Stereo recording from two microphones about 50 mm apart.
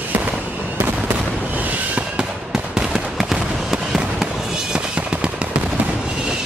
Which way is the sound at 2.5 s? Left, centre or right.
Centre.